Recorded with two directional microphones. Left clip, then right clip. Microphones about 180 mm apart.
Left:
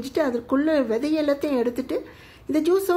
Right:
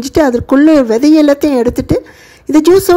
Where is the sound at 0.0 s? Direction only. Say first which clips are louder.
Right 13 dB; 45° right (ahead or behind).